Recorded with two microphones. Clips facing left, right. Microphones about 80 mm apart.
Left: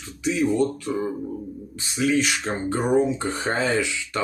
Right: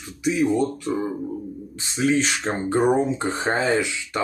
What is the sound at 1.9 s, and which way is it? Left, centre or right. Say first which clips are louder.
Speech: right 1 dB; right.